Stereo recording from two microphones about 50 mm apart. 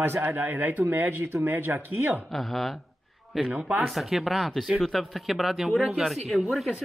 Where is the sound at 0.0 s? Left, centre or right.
Right.